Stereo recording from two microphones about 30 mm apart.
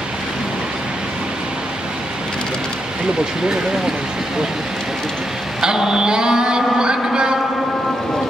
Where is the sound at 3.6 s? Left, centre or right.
Right.